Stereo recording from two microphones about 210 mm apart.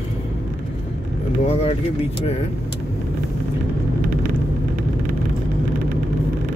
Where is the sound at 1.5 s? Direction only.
30° left (ahead or behind).